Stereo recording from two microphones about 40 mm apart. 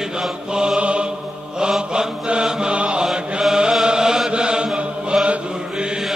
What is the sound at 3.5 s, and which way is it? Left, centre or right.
Chant, centre.